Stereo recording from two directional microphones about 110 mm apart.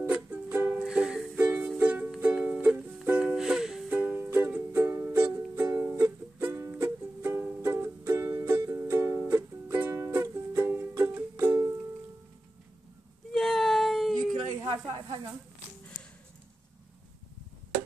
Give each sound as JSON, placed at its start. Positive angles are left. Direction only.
{"t": 0.0, "sound": "music", "side_deg": -15}
{"t": 3.9, "sound": "music", "side_deg": -15}
{"t": 8.4, "sound": "music", "side_deg": -35}
{"t": 8.6, "sound": "music", "side_deg": -25}
{"t": 13.3, "sound": "baby cry", "side_deg": 5}
{"t": 14.9, "sound": "snake", "side_deg": -40}